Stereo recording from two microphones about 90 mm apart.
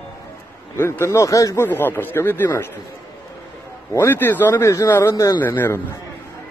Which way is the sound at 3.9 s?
25° left (ahead or behind).